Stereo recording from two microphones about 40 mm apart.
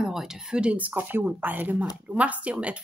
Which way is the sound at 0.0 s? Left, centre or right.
Centre.